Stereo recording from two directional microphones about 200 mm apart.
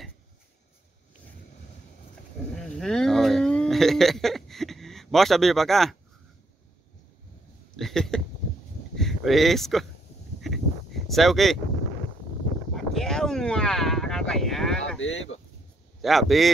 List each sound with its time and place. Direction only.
2.6 s a sound: 5° left (ahead or behind)
7.7 s speech: centre (ahead or behind)
10.4 s a sound: centre (ahead or behind)
12.9 s speech: centre (ahead or behind)
15.0 s speech: 70° left (ahead or behind)
16.0 s speech: centre (ahead or behind)